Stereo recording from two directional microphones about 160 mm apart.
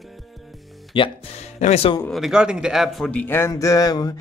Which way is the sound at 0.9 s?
30° left (ahead or behind).